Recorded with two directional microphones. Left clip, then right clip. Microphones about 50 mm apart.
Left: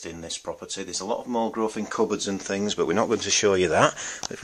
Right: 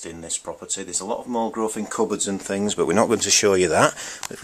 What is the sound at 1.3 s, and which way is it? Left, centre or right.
Speech, centre.